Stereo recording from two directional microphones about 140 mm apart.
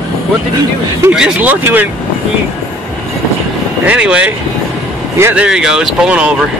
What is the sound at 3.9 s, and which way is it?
Speech, 10° right (ahead or behind).